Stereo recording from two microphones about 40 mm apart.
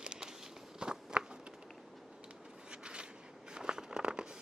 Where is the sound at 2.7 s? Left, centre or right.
Right.